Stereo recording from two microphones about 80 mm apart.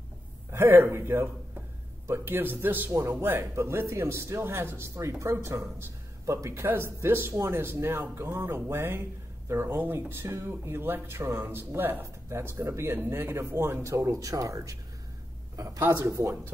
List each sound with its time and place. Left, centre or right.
0.5 s a woman's voice: right